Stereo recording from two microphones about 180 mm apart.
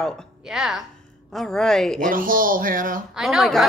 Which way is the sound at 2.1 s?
50° right (ahead or behind).